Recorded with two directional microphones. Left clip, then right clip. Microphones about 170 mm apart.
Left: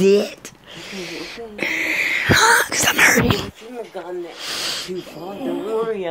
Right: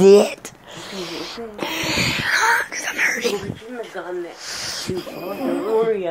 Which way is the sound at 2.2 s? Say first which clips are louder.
Left 5 dB; 55° left (ahead or behind).